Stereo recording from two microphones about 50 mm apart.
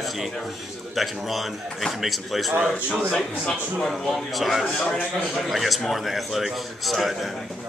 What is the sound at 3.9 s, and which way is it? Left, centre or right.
Speech, centre.